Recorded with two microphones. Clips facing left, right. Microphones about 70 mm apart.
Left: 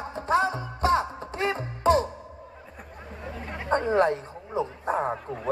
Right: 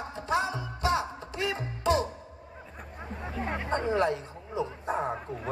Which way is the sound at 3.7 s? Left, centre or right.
Left.